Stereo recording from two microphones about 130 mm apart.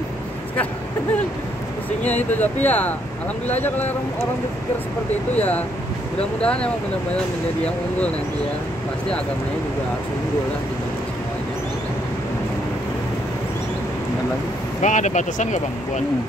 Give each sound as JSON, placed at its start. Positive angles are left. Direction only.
{"t": 2.0, "sound": "speech", "side_deg": 10}
{"t": 6.4, "sound": "speech", "side_deg": 10}
{"t": 14.8, "sound": "speech", "side_deg": 70}